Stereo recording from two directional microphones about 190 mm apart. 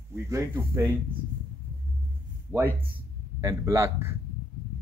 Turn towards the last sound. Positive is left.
turn(degrees=-15)  # may be behind; listen again after turning